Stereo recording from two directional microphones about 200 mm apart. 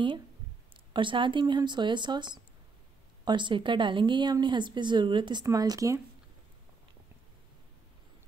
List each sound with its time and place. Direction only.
0.9 s a woman's voice: 25° right (ahead or behind)